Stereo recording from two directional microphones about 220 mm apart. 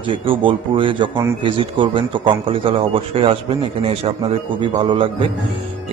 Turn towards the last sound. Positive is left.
turn(degrees=-25)  # may be behind; listen again after turning